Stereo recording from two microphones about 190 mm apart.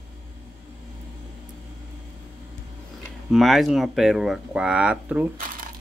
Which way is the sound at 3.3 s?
Centre (ahead or behind).